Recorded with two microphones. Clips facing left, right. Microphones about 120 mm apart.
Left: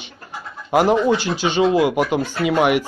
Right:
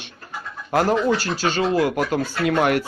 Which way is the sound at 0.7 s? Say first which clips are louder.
Left 3 dB; 15° left (ahead or behind).